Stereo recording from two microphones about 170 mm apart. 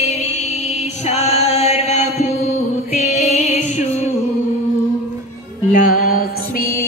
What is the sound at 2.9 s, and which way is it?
Music, 40° left (ahead or behind).